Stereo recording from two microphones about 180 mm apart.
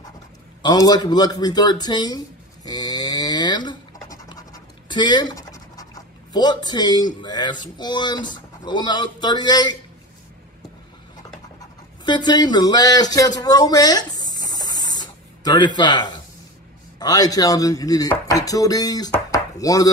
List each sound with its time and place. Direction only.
0.6 s a sound: 20° left (ahead or behind)
6.3 s speech: 25° left (ahead or behind)
12.0 s speech: 25° left (ahead or behind)